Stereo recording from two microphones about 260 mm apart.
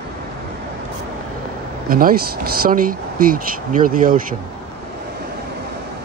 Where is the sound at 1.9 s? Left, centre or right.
Right.